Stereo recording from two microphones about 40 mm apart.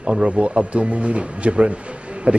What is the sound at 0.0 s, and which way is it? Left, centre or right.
Speech, right.